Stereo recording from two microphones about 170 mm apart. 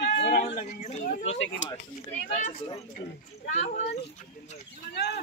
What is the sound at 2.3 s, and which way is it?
A woman's voice, 40° left (ahead or behind).